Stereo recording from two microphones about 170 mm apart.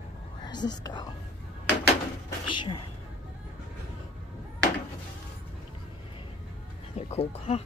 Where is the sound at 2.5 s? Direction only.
30° left (ahead or behind).